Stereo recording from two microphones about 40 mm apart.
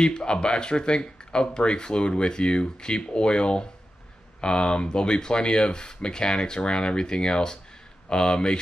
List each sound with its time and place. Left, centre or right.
0.0 s speech: left